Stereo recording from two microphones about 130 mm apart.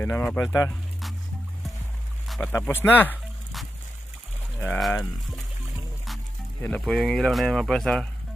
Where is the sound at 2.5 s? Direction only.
15° left (ahead or behind).